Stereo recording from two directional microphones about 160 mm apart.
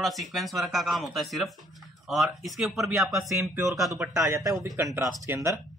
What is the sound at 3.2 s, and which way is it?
Speech, 20° right (ahead or behind).